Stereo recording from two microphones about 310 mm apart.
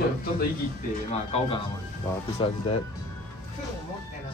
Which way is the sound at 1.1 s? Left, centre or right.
Centre.